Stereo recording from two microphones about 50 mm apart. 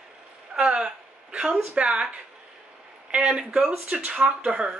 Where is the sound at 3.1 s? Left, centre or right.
Right.